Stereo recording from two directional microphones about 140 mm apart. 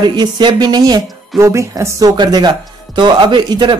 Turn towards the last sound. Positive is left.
turn(degrees=-35)  # may be behind; listen again after turning